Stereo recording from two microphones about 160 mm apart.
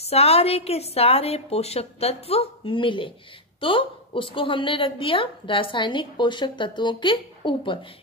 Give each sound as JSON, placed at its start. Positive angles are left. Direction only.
{"t": 0.0, "sound": "a woman's voice", "side_deg": 40}